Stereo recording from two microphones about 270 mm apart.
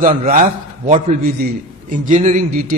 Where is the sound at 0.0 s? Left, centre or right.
Right.